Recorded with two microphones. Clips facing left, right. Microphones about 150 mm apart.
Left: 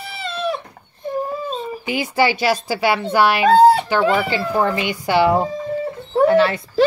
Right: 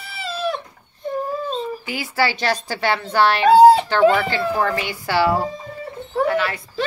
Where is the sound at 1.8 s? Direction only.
20° left (ahead or behind).